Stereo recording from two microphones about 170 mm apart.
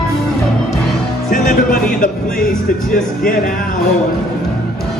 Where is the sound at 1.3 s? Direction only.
55° left (ahead or behind).